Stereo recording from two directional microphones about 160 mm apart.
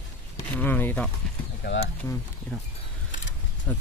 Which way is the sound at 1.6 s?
80° left.